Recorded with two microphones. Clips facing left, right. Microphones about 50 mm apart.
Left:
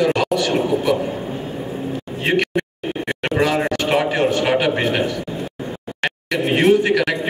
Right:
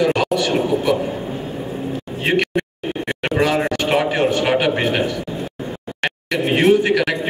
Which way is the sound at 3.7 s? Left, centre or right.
Right.